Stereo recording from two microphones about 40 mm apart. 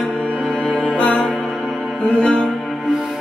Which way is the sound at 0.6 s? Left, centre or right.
Left.